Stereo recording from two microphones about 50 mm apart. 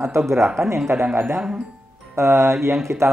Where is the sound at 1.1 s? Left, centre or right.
Right.